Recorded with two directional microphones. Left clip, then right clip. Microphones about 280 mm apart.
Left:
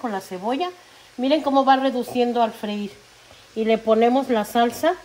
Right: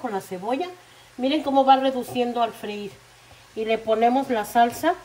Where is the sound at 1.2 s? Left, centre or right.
Left.